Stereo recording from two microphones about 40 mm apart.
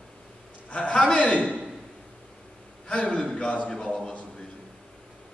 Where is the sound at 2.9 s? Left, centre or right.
Left.